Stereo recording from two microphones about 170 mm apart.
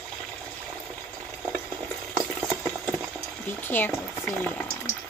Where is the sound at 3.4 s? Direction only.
10° left (ahead or behind).